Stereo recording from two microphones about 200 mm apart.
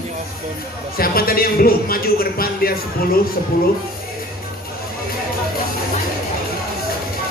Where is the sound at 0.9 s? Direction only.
50° left (ahead or behind).